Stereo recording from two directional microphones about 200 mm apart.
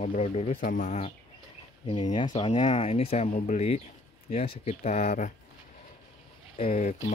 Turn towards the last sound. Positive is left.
turn(degrees=35)  # may be behind; listen again after turning